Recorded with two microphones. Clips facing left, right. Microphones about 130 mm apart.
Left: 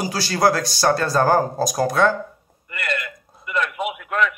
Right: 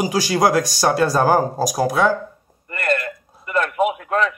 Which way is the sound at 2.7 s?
45° right (ahead or behind).